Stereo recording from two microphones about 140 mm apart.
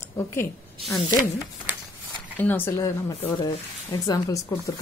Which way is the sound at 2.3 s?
15° left (ahead or behind).